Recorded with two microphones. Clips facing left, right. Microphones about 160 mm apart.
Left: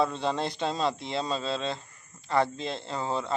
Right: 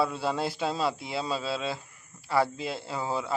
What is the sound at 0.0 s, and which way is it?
Speech, 5° right (ahead or behind).